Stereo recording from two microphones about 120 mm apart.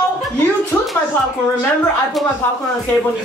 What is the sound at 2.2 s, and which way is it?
Speech, centre (ahead or behind).